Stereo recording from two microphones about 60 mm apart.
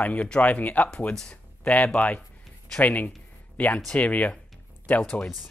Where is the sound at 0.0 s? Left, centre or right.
Left.